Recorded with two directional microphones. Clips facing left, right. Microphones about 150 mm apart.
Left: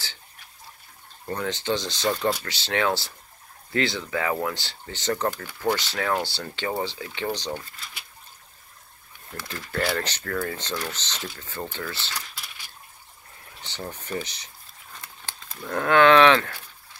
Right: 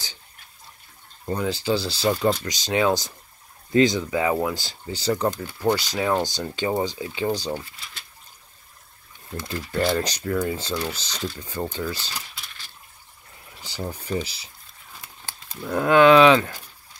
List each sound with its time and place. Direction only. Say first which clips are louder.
1.2 s speech: right 3 dB; 10° right (ahead or behind)
9.3 s speech: right 4 dB; 20° right (ahead or behind)
13.6 s speech: right 4 dB; 10° right (ahead or behind)
14.2 s a sound: right 3 dB; 5° right (ahead or behind)